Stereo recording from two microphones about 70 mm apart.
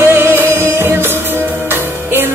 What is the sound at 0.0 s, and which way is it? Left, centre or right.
Music, right.